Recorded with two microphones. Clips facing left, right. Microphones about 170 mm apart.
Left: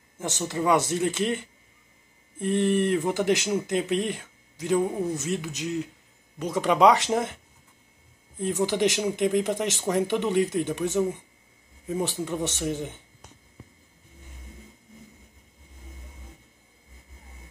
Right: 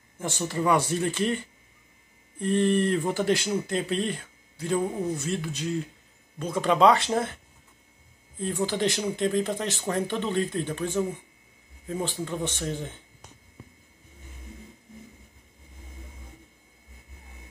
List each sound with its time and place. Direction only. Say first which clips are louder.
0.2 s speech: even; 15° left (ahead or behind)
8.4 s speech: left 3 dB; 15° left (ahead or behind)